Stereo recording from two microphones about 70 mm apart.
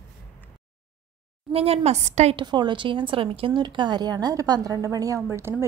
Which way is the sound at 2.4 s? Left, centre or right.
Right.